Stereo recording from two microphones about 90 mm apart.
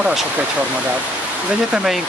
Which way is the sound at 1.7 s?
5° right (ahead or behind).